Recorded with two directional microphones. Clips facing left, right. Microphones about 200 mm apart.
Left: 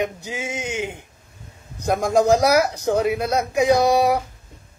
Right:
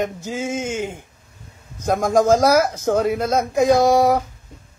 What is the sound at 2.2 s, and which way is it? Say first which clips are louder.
Speech: right 1 dB; 15° left (ahead or behind).